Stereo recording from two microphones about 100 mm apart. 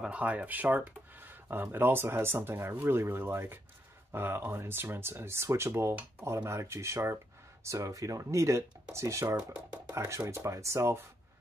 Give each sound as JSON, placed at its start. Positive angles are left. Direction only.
{"t": 0.0, "sound": "speech", "side_deg": -15}
{"t": 9.4, "sound": "speech", "side_deg": -15}
{"t": 9.9, "sound": "speech", "side_deg": -30}